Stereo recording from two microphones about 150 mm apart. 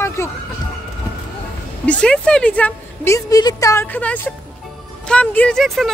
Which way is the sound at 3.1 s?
25° left (ahead or behind).